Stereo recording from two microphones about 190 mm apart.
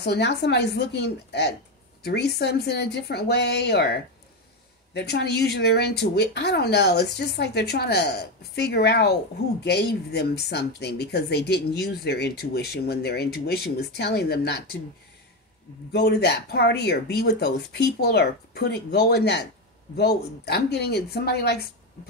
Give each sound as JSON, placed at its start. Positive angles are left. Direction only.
{"t": 0.0, "sound": "speech", "side_deg": 60}
{"t": 15.9, "sound": "speech", "side_deg": 60}